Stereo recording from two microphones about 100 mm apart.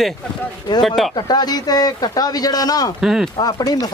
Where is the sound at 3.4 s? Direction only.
40° left (ahead or behind).